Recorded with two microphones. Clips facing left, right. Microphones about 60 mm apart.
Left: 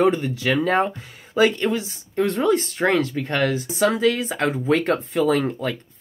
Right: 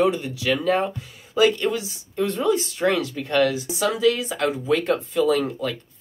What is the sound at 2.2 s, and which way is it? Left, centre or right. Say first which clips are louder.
Speech: left 2 dB; left.